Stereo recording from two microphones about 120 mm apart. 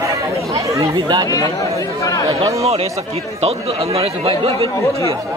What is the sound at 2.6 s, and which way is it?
Speech, 55° right (ahead or behind).